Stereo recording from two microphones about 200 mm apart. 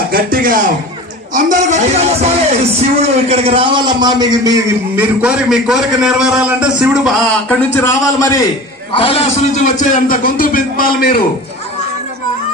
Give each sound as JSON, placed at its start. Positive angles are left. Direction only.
{"t": 0.1, "sound": "speech", "side_deg": -45}
{"t": 4.9, "sound": "a man's voice", "side_deg": -5}
{"t": 8.9, "sound": "a man's voice", "side_deg": 30}